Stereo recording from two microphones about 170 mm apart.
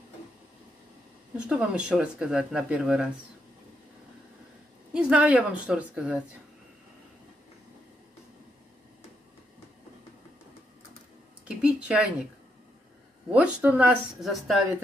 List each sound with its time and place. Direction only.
1.3 s speech: 5° right (ahead or behind)
4.9 s speech: 5° right (ahead or behind)
11.4 s a sound: 5° right (ahead or behind)
13.3 s speech: 5° right (ahead or behind)